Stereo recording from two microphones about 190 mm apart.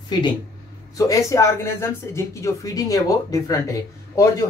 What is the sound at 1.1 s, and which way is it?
Speech, 15° left (ahead or behind).